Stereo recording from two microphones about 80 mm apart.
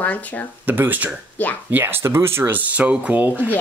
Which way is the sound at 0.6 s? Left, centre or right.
Right.